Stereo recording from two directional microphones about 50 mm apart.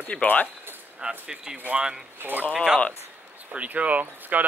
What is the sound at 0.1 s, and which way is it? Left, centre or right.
Speech, left.